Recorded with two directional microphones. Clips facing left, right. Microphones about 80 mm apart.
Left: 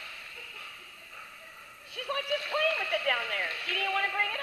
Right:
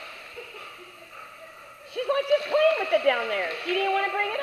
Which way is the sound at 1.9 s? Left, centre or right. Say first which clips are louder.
Right 10 dB; right.